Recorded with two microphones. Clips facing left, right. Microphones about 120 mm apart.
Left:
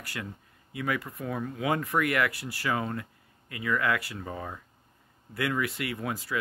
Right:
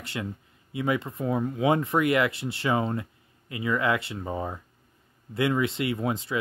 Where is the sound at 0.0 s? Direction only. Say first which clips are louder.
Right 5 dB; 25° right (ahead or behind).